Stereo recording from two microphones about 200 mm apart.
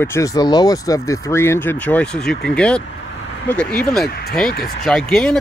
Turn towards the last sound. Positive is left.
turn(degrees=5)  # may be behind; listen again after turning